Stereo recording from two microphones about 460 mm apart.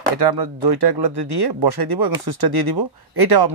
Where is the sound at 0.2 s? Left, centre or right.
Right.